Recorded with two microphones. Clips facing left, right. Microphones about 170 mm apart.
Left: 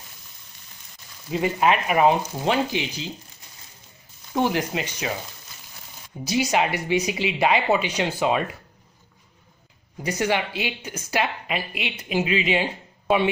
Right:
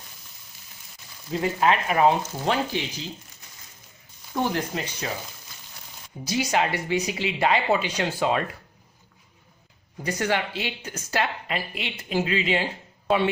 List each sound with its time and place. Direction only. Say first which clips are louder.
1.3 s speech: left 1 dB; 15° left (ahead or behind)
4.5 s speech: left 3 dB; 10° left (ahead or behind)
6.2 s speech: left 2 dB; 20° left (ahead or behind)
10.0 s speech: left 2 dB; 15° left (ahead or behind)